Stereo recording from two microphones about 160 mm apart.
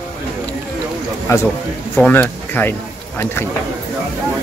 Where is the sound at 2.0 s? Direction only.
10° left (ahead or behind).